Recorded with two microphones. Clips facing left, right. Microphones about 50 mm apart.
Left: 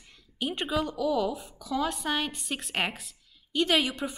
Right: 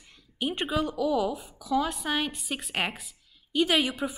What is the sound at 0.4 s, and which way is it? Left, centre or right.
A woman's voice, centre.